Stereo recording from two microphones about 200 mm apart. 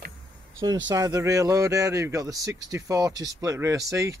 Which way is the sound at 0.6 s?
20° right (ahead or behind).